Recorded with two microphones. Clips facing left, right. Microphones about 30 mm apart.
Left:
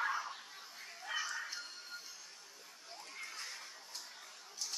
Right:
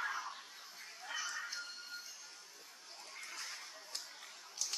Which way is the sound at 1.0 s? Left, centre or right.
Centre.